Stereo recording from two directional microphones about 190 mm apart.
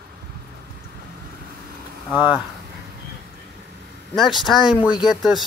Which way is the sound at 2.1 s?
10° right (ahead or behind).